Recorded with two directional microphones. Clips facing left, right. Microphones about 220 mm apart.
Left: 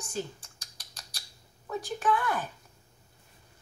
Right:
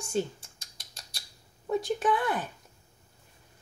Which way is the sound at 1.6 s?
25° right (ahead or behind).